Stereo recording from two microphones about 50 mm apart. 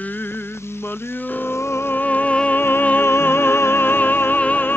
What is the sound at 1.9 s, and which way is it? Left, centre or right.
Music, left.